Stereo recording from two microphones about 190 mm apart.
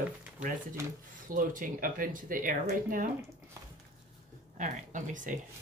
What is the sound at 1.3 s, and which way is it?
Speech, 45° right (ahead or behind).